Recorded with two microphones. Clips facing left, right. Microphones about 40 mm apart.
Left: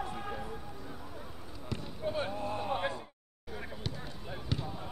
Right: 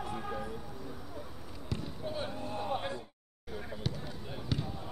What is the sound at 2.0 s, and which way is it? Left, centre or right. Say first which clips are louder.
Speech: left 5 dB; left.